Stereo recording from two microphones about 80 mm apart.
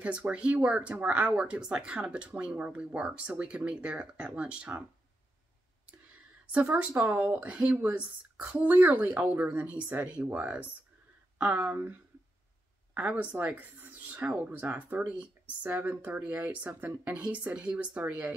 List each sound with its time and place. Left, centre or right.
0.0 s speech: centre
6.5 s speech: centre